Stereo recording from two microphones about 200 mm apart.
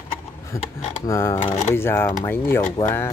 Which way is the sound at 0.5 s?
15° left (ahead or behind).